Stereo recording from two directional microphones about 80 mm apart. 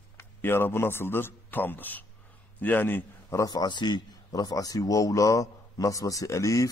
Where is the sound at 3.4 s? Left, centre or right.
Left.